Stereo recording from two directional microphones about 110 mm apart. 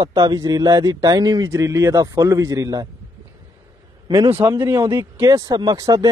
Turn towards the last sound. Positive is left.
turn(degrees=-30)  # may be behind; listen again after turning